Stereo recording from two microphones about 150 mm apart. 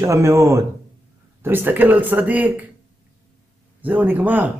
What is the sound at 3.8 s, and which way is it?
Speech, 10° right (ahead or behind).